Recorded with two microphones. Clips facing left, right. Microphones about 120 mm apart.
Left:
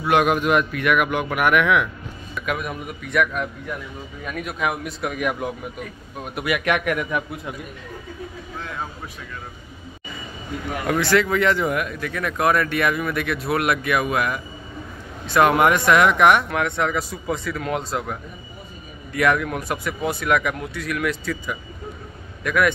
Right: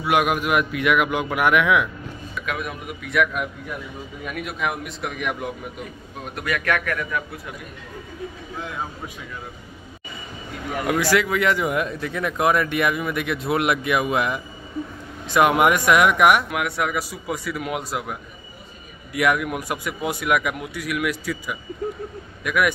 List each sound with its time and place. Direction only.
0.0 s speech: 5° right (ahead or behind)
2.4 s a man's voice: centre (ahead or behind); by 7.5 s 20° left (ahead or behind)
10.9 s speech: 10° right (ahead or behind)
11.7 s speech: 25° right (ahead or behind)
19.1 s a man's voice: 15° right (ahead or behind)